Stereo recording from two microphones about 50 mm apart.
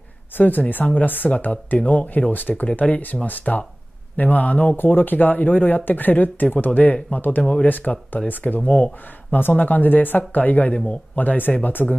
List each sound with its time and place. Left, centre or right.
0.4 s speech: left
4.7 s speech: left